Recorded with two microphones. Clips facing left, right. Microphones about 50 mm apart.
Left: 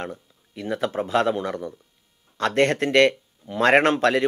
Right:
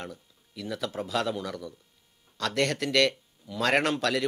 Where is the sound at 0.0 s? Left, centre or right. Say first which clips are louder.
Left 7 dB; left.